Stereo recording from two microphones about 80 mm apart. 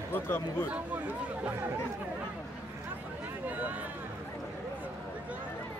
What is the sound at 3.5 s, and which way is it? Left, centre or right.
Speech, right.